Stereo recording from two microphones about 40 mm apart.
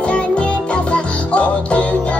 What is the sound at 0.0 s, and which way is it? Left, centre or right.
Music, left.